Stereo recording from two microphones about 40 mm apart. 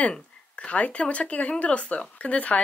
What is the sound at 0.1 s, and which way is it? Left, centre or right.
Speech, left.